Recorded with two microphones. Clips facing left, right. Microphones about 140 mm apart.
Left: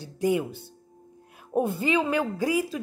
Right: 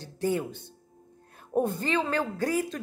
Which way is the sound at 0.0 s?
10° left (ahead or behind).